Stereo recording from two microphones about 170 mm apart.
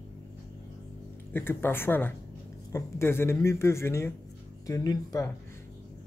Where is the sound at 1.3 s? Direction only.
10° left (ahead or behind).